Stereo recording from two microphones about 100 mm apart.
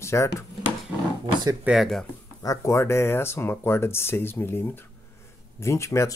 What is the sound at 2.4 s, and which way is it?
Speech, 35° left (ahead or behind).